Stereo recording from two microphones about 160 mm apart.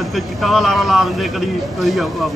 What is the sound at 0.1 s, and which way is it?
A man's voice, centre (ahead or behind).